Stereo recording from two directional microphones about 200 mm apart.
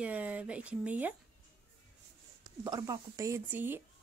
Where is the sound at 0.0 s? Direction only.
5° right (ahead or behind).